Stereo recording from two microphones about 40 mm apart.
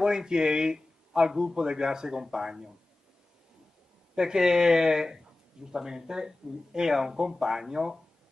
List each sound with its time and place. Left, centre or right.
0.0 s speech: centre
4.1 s speech: centre